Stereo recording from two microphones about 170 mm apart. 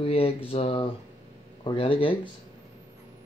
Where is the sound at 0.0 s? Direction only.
35° left (ahead or behind).